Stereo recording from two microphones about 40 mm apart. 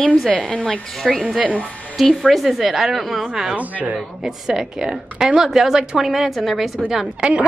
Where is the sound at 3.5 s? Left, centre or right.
Right.